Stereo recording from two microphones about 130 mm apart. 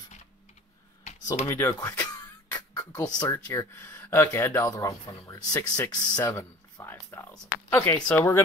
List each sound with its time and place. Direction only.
1.0 s computer keyboard: 60° left (ahead or behind)
1.5 s speech: 25° left (ahead or behind)
2.7 s a sound: 30° left (ahead or behind)
3.3 s speech: 20° left (ahead or behind)